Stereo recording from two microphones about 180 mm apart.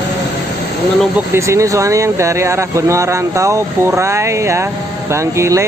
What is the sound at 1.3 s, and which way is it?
Speech, 15° right (ahead or behind).